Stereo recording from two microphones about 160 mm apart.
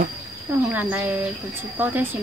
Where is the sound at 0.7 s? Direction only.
10° right (ahead or behind).